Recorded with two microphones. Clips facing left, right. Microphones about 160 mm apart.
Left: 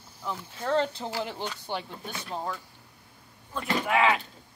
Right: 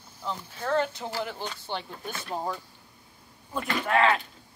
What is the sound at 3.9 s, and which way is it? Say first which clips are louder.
Cricket: right 1 dB; 10° left (ahead or behind).